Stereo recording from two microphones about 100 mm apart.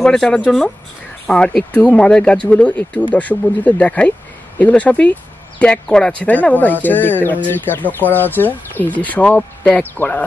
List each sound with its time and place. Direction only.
0.0 s speech: 5° left (ahead or behind)